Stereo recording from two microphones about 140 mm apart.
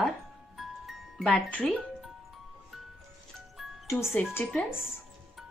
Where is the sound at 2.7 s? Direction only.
Centre (ahead or behind).